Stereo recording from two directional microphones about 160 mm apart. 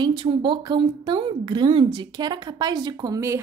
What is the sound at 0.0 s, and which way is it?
A woman's voice, 35° right (ahead or behind).